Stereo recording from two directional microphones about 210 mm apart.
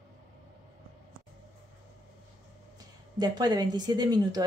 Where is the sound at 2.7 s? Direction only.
20° right (ahead or behind).